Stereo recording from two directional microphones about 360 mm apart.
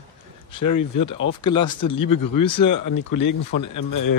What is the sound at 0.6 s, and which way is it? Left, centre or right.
Speech, left.